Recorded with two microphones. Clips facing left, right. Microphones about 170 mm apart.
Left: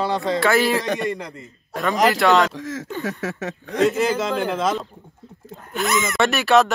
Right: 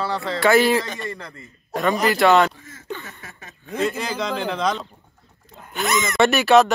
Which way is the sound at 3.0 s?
75° left (ahead or behind).